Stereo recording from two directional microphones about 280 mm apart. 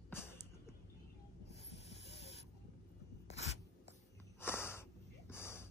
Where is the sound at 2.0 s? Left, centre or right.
Left.